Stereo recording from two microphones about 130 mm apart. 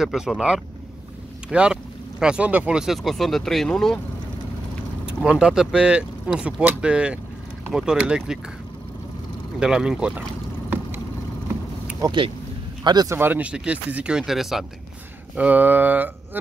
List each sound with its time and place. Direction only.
0.0 s speech: 5° right (ahead or behind)
5.0 s speech: 5° right (ahead or behind)
9.6 s speech: 5° right (ahead or behind)
12.0 s speech: 35° right (ahead or behind)
13.1 s speech: 15° right (ahead or behind)